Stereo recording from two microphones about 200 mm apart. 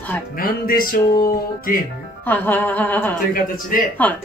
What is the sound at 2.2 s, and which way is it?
Music, 10° left (ahead or behind).